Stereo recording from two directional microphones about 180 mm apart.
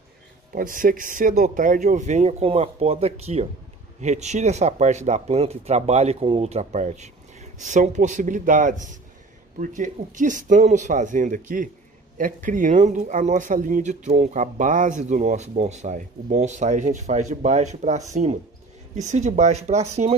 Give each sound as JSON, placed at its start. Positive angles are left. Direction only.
{"t": 0.5, "sound": "speech", "side_deg": -50}